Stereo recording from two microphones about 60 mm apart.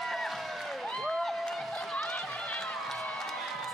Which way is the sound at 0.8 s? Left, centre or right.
Centre.